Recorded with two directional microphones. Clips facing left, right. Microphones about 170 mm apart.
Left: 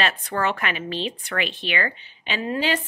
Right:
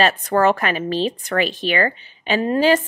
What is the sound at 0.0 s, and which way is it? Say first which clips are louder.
A woman's voice: right 8 dB; 40° right (ahead or behind).